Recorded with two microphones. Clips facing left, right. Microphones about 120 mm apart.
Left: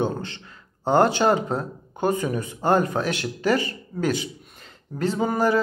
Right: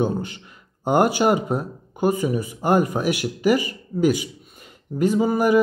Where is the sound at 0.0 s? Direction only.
10° right (ahead or behind).